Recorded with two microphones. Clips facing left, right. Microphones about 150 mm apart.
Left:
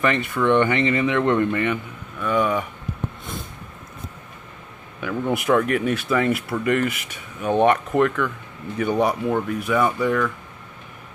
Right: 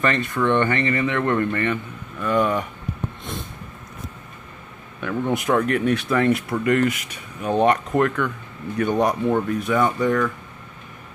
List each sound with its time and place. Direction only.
0.0 s speech: 10° left (ahead or behind)
2.1 s speech: centre (ahead or behind)
5.0 s speech: 5° left (ahead or behind)